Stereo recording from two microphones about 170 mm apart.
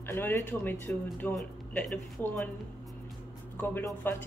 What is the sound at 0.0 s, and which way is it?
Speech, 15° left (ahead or behind).